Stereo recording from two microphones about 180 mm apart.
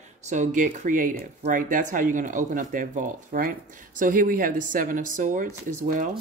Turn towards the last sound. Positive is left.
turn(degrees=-45)  # may be behind; listen again after turning